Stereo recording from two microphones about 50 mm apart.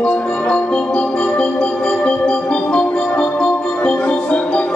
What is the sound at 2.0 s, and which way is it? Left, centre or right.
Music, left.